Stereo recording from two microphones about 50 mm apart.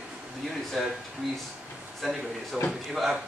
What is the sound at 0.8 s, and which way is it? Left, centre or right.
Speech, centre.